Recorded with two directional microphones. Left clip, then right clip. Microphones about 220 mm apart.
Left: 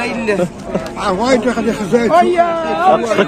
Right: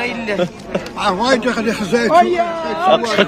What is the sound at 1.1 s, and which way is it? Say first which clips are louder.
Speech: left 1 dB; 45° right (ahead or behind).